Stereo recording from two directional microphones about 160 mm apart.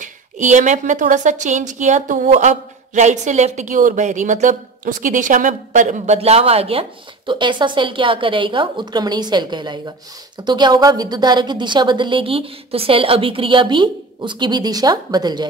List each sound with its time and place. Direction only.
0.0 s a woman's voice: 50° right (ahead or behind); by 15.4 s 25° right (ahead or behind)